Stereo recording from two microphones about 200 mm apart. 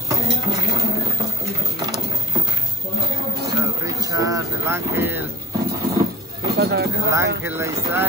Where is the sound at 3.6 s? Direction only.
15° right (ahead or behind).